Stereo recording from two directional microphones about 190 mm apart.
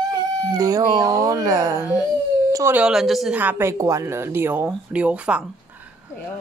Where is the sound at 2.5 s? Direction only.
10° right (ahead or behind).